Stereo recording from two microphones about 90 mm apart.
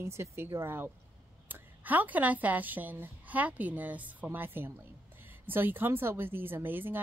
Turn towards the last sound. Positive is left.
turn(degrees=-20)  # may be behind; listen again after turning